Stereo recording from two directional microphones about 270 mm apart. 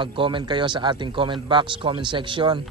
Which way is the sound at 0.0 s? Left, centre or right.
Centre.